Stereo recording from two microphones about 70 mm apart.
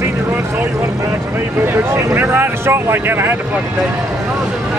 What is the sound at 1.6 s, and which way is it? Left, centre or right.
Vehicle, right.